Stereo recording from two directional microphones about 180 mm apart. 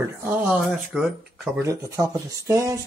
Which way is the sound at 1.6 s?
15° right (ahead or behind).